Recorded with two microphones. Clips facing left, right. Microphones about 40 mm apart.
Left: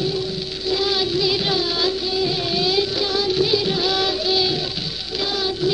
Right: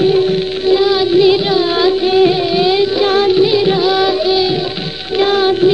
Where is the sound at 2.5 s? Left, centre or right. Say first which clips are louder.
Right 8 dB; right.